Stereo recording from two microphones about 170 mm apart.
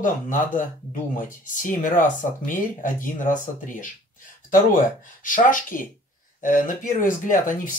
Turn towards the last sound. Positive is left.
turn(degrees=50)  # may be behind; listen again after turning